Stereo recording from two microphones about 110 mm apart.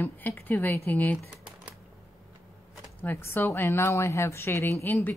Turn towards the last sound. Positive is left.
turn(degrees=15)  # may be behind; listen again after turning